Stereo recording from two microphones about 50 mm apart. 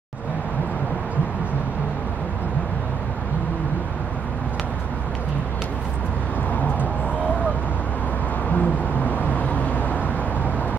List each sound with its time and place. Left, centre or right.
8.5 s vehicle: left